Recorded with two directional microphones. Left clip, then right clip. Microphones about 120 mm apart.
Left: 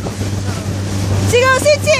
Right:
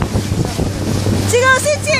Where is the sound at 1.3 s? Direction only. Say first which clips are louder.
Left 2 dB; 25° left (ahead or behind).